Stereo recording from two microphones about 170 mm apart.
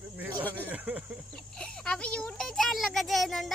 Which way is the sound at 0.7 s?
10° right (ahead or behind).